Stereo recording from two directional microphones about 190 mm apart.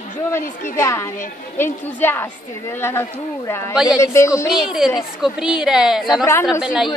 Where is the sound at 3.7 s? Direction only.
5° right (ahead or behind).